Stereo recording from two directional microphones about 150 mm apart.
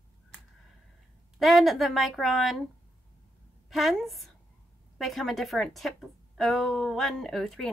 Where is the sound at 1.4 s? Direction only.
Centre (ahead or behind).